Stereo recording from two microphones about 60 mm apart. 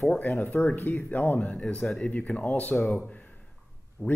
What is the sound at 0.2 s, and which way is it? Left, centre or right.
Speech, left.